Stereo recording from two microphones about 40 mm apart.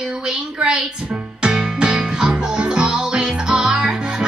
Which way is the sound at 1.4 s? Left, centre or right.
Centre.